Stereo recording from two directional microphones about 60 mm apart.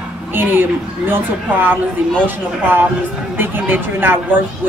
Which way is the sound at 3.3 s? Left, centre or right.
Right.